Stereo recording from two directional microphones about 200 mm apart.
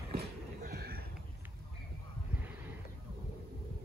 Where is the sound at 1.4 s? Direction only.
10° right (ahead or behind).